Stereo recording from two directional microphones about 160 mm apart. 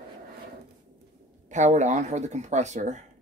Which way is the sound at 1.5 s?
50° right (ahead or behind).